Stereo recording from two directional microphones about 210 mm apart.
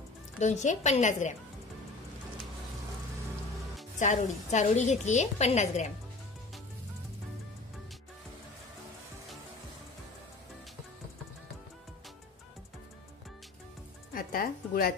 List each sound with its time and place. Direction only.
0.4 s a woman's voice: 35° left (ahead or behind)
4.0 s a woman's voice: 35° left (ahead or behind)
14.1 s speech: 45° left (ahead or behind)